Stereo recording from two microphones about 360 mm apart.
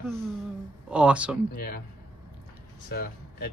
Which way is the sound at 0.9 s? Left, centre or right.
Centre.